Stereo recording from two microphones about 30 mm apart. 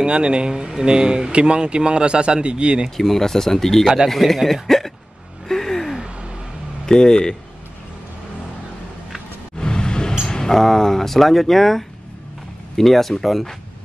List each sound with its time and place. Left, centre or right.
0.0 s speech: right
0.7 s speech: right
3.0 s speech: centre
4.6 s hiccup: centre
5.5 s gasp: centre
5.9 s a sound: right
6.9 s speech: left
9.6 s a sound: left
10.5 s speech: centre